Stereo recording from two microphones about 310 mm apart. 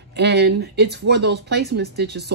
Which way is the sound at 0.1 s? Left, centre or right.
Right.